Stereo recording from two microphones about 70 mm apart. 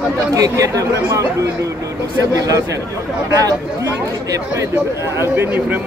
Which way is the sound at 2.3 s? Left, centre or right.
Right.